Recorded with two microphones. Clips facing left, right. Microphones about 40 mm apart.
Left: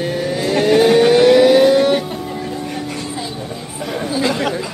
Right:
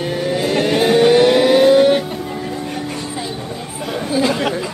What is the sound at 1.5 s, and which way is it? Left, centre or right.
Music, right.